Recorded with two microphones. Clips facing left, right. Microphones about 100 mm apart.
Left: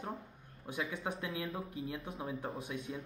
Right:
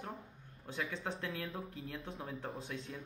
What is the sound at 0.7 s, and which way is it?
Speech, 15° left (ahead or behind).